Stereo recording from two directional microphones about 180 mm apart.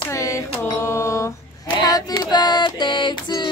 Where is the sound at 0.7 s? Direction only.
15° left (ahead or behind).